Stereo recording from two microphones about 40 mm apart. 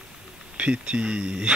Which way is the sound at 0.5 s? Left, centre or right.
Right.